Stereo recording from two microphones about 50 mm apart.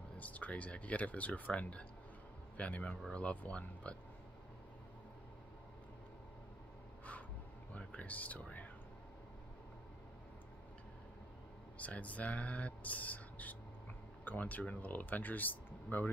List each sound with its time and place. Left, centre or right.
0.2 s a man's voice: left
7.7 s speech: left
11.8 s speech: left